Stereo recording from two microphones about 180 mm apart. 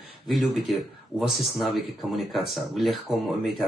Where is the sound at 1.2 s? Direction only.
Centre (ahead or behind).